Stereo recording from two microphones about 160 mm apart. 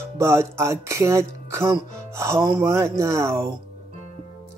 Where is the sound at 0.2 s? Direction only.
15° right (ahead or behind).